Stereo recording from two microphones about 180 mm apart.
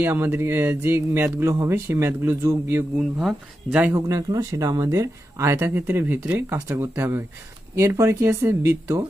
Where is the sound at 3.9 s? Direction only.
20° right (ahead or behind).